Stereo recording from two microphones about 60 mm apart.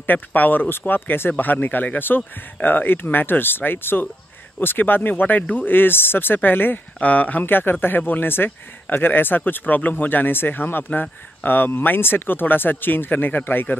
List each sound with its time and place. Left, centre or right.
0.0 s speech: left
7.0 s speech: left